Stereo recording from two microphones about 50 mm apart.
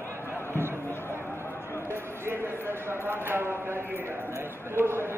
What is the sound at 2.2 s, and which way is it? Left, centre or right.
A man's voice, right.